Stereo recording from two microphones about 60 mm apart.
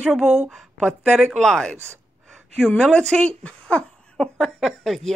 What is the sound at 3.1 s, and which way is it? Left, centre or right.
Speech, centre.